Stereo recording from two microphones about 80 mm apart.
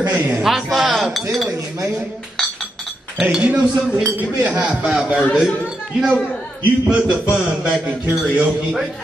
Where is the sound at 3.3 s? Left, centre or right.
Centre.